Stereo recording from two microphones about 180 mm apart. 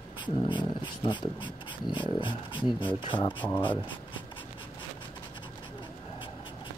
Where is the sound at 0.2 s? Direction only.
25° left (ahead or behind).